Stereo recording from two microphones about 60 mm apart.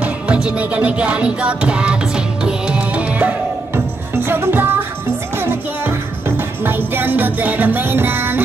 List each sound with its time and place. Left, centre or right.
0.0 s music: centre
3.7 s music: right